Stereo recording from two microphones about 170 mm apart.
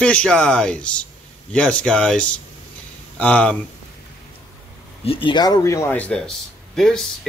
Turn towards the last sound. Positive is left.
turn(degrees=5)  # may be behind; listen again after turning